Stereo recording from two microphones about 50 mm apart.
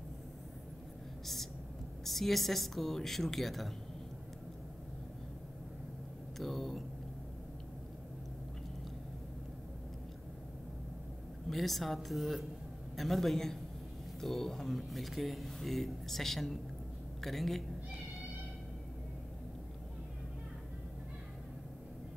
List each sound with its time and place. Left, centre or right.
1.2 s a sound: centre
2.0 s speech: centre
6.3 s speech: centre
11.4 s speech: centre